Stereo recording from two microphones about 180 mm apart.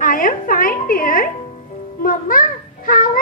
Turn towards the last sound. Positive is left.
turn(degrees=50)  # may be behind; listen again after turning